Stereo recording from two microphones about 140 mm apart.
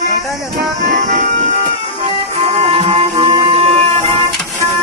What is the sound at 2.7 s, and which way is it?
Music, 45° right (ahead or behind).